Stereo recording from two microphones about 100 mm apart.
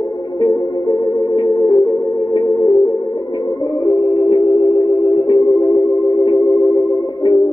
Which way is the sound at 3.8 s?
40° left (ahead or behind).